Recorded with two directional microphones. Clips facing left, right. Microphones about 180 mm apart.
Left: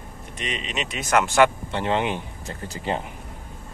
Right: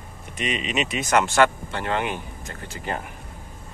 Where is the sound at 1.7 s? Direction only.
25° left (ahead or behind).